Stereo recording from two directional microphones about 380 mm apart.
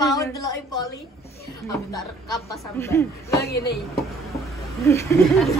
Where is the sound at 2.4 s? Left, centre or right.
Centre.